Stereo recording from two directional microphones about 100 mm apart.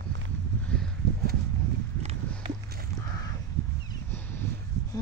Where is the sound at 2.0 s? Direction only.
90° right.